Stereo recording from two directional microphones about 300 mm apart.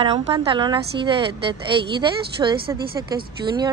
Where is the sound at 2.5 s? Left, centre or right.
Right.